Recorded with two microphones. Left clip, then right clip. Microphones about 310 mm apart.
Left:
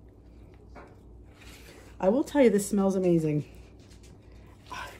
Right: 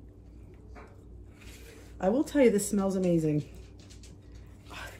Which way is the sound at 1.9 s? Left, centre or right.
Centre.